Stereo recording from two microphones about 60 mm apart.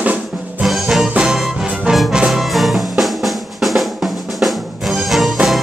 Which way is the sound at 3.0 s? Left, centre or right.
Centre.